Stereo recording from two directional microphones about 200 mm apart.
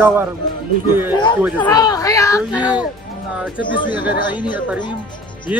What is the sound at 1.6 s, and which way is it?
Speech, 15° left (ahead or behind).